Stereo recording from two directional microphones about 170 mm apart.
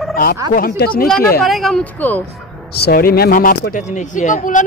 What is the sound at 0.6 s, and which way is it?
Speech, 60° left (ahead or behind).